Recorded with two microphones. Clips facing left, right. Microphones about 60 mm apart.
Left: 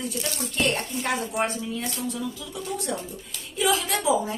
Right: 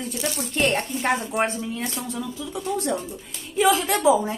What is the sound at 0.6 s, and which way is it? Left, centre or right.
A woman's voice, right.